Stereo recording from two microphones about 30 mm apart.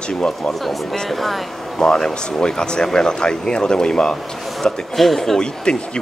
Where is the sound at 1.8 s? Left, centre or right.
Left.